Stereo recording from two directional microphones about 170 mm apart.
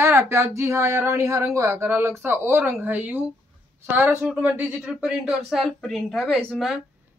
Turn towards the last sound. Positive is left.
turn(degrees=0)  # may be behind; listen again after turning